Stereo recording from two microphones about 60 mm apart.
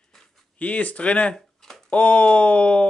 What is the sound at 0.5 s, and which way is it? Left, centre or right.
Speech, left.